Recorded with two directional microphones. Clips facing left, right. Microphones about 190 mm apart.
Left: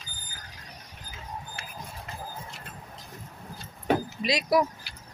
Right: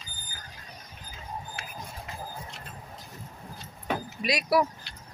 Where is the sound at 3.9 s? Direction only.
25° left (ahead or behind).